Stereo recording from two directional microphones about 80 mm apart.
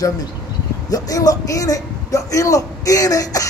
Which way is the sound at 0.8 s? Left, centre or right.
Left.